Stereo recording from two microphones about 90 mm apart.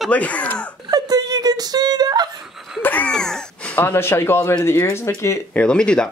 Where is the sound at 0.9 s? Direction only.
45° right (ahead or behind).